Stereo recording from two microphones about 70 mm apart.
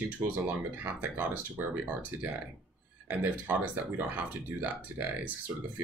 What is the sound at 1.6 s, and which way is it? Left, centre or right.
Speech, right.